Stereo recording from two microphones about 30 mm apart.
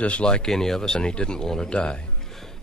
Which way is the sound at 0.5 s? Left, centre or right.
Centre.